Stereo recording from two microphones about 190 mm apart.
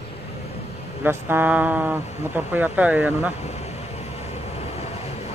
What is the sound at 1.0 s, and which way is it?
Speech, 10° right (ahead or behind).